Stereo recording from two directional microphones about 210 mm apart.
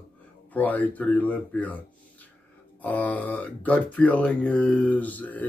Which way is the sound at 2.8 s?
5° left (ahead or behind).